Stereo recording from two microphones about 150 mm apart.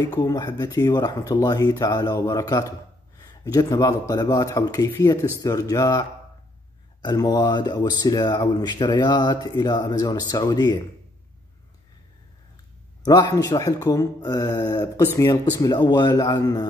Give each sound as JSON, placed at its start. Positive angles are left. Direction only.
{"t": 0.0, "sound": "speech", "side_deg": 25}
{"t": 13.0, "sound": "speech", "side_deg": 25}